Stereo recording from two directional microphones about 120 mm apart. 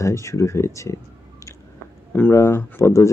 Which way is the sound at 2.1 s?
20° left (ahead or behind).